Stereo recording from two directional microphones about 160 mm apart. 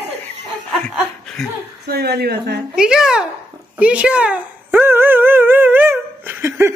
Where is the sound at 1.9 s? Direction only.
85° right.